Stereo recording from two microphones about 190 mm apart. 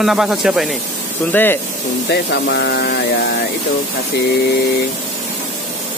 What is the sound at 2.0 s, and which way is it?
Speech, 60° left (ahead or behind).